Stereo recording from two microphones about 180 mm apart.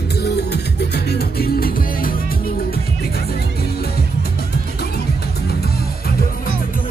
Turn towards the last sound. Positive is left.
turn(degrees=60)  # may be behind; listen again after turning